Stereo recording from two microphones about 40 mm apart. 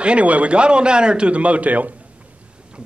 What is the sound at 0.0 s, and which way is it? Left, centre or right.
A man's voice, right.